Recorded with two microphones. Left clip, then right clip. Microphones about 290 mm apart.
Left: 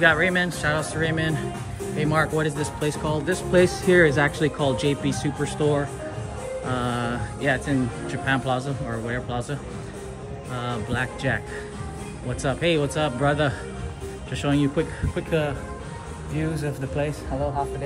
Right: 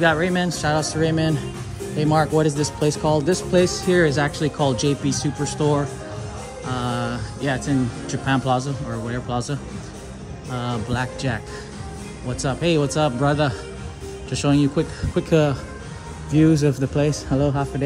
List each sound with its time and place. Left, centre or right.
0.0 s speech: centre
16.6 s speech: centre